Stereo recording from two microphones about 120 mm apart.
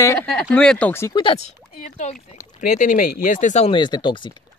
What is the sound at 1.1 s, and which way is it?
Speech, 45° left (ahead or behind).